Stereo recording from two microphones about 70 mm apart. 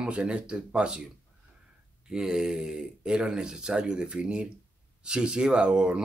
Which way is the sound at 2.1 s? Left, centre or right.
Centre.